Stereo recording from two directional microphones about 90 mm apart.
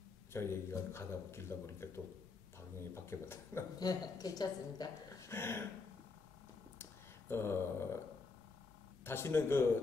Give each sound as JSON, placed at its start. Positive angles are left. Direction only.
{"t": 0.3, "sound": "a man's voice", "side_deg": 30}
{"t": 3.8, "sound": "a woman's voice", "side_deg": 45}
{"t": 5.3, "sound": "a man's voice", "side_deg": 30}
{"t": 6.8, "sound": "a sound", "side_deg": 30}
{"t": 9.0, "sound": "a man's voice", "side_deg": 25}